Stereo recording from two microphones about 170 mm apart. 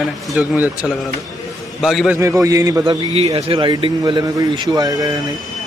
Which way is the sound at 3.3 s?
30° right (ahead or behind).